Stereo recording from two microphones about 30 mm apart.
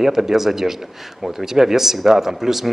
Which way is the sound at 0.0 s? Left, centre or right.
Centre.